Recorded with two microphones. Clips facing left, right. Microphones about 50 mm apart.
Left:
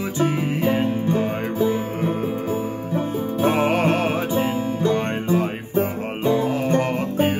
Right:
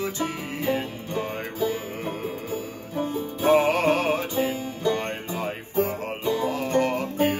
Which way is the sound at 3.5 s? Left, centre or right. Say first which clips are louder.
Right 1 dB; centre.